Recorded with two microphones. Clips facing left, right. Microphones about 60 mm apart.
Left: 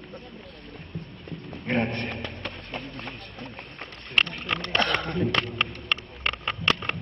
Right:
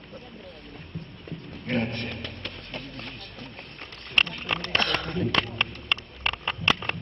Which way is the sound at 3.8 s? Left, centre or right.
Centre.